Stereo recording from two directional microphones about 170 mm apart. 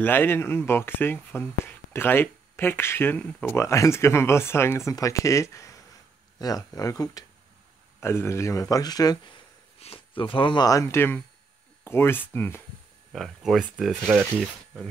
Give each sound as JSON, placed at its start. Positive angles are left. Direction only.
{"t": 0.0, "sound": "speech", "side_deg": 10}
{"t": 9.8, "sound": "speech", "side_deg": 35}
{"t": 13.1, "sound": "speech", "side_deg": 0}